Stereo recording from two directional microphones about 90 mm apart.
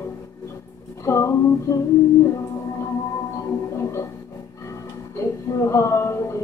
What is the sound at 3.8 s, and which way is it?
Music, 30° left (ahead or behind).